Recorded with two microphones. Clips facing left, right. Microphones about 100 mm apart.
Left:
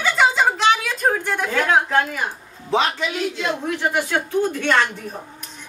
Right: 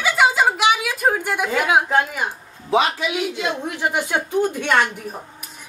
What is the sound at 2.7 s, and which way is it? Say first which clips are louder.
A woman's voice: right 2 dB; 5° right (ahead or behind).